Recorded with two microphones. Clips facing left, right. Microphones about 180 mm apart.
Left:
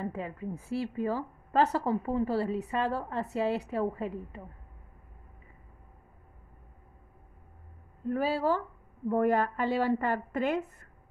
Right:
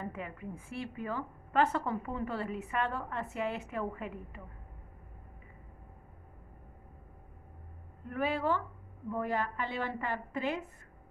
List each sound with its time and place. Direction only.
0.0 s a woman's voice: 30° left (ahead or behind)
8.1 s a woman's voice: 35° left (ahead or behind)
9.1 s a woman's voice: 50° left (ahead or behind)